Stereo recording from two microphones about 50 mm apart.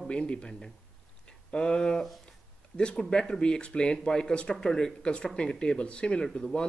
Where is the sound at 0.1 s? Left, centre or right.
Centre.